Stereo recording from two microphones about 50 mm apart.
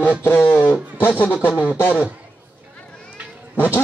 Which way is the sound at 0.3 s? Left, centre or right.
Left.